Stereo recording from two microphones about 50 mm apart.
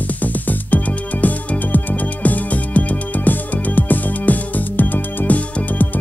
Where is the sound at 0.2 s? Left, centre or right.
Left.